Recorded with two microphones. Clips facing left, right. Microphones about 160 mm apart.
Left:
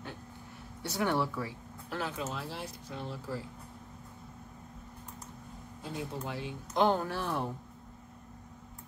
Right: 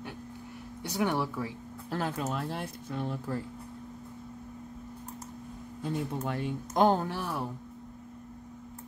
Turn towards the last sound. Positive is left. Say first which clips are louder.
# even
turn(degrees=-15)  # may be behind; listen again after turning